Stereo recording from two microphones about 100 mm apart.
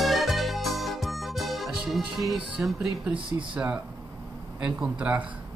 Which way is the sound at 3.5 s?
15° right (ahead or behind).